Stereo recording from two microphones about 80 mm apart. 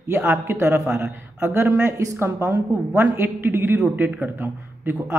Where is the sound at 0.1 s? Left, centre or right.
Right.